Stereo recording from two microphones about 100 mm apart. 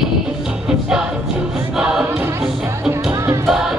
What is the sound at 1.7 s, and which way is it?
Choir, 5° right (ahead or behind).